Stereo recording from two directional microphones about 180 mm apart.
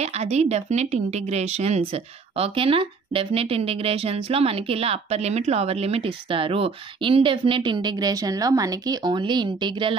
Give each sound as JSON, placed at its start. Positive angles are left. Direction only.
{"t": 0.0, "sound": "speech", "side_deg": -35}